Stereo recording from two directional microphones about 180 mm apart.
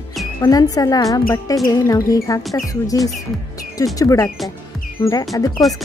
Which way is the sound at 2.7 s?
20° left (ahead or behind).